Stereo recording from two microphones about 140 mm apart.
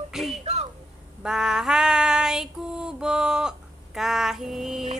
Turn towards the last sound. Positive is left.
turn(degrees=0)  # may be behind; listen again after turning